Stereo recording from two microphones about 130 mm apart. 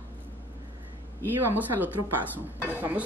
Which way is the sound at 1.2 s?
15° right (ahead or behind).